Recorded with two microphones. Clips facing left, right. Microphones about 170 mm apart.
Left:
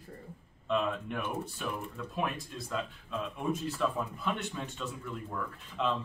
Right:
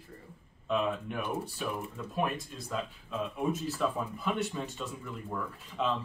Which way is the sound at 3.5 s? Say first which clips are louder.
Left 1 dB; centre (ahead or behind).